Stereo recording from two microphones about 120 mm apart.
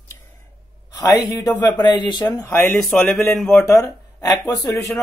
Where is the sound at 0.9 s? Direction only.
30° left (ahead or behind).